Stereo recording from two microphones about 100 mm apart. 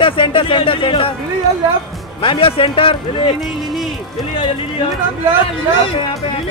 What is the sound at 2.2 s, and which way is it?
Speech, 60° left (ahead or behind).